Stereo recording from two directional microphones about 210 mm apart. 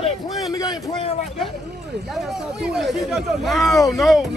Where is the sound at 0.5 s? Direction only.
20° left (ahead or behind).